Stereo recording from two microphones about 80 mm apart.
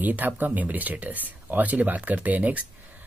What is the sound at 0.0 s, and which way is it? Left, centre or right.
Speech, right.